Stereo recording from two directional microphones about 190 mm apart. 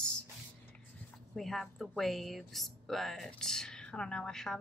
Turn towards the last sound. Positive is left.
turn(degrees=5)  # may be behind; listen again after turning